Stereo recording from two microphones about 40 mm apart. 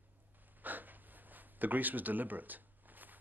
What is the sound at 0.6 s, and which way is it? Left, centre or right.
Gasp, right.